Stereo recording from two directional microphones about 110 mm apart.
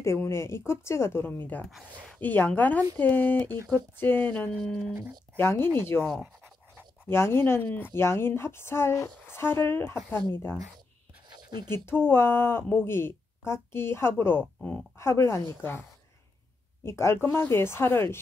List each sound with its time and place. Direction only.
0.0 s a woman's voice: 25° left (ahead or behind)
7.1 s a woman's voice: 25° left (ahead or behind)
11.3 s a sound: 40° right (ahead or behind)
11.7 s a woman's voice: 20° left (ahead or behind)
15.0 s a woman's voice: 25° left (ahead or behind)
16.8 s a woman's voice: 25° left (ahead or behind)